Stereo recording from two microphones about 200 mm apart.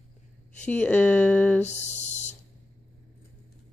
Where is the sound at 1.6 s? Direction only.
35° left (ahead or behind).